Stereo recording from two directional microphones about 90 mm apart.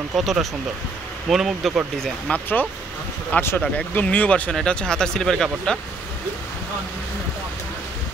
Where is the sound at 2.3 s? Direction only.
20° left (ahead or behind).